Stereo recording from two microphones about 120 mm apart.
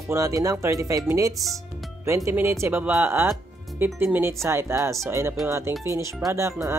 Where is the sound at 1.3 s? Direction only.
Centre (ahead or behind).